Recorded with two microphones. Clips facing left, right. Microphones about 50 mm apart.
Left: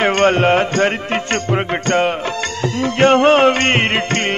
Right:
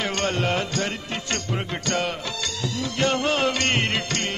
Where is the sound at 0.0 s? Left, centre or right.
Left.